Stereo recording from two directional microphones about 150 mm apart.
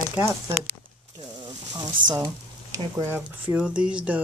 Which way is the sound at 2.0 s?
30° right (ahead or behind).